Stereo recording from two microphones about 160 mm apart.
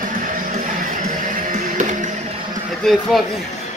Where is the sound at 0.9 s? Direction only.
55° right (ahead or behind).